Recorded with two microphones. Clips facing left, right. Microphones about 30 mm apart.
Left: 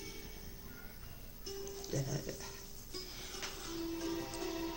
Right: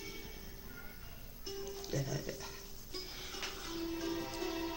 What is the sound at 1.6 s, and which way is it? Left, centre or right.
Music, centre.